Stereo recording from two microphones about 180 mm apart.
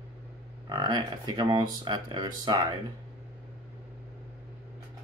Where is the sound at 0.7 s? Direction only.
25° right (ahead or behind).